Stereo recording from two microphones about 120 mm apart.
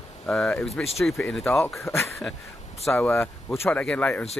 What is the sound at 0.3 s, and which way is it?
Speech, 10° left (ahead or behind).